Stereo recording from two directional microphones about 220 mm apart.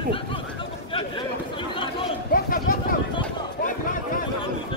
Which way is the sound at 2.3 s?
40° left (ahead or behind).